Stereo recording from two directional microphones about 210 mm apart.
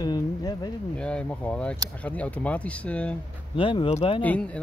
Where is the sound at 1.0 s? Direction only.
5° left (ahead or behind).